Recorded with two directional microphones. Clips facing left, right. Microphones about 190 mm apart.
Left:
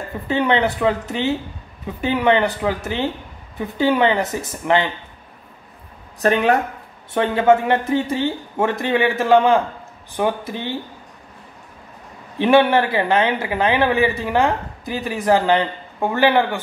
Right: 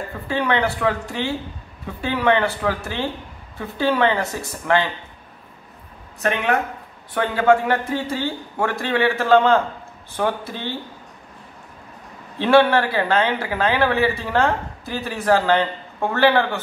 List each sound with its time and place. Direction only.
0.3 s speech: 20° left (ahead or behind)
6.2 s speech: 35° left (ahead or behind)
7.2 s speech: 20° left (ahead or behind)
12.4 s speech: 15° left (ahead or behind)